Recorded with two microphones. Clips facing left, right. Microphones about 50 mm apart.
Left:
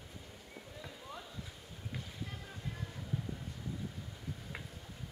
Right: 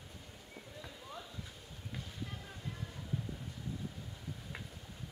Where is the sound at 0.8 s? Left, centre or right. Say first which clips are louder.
Even; centre.